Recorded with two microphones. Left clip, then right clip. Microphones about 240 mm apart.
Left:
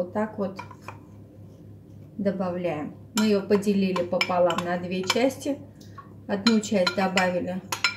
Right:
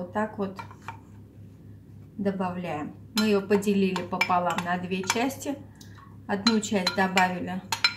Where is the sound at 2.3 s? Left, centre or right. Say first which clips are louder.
Left 3 dB; right.